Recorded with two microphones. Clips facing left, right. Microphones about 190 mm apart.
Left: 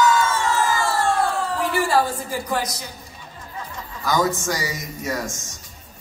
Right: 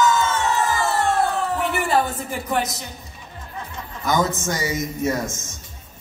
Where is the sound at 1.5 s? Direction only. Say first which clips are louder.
Left 2 dB; 20° right (ahead or behind).